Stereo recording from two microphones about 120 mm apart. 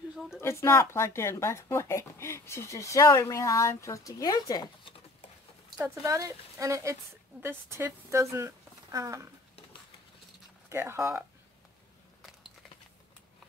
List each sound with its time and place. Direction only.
0.4 s speech: 20° left (ahead or behind)
5.8 s speech: 25° right (ahead or behind)
10.7 s speech: 20° right (ahead or behind)
12.2 s a sound: 5° right (ahead or behind)